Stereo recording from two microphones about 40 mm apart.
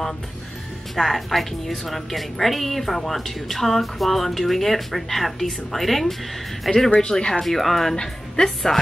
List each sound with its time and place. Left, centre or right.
0.9 s speech: centre
7.0 s speech: left
7.4 s speech: centre
7.9 s a woman's voice: centre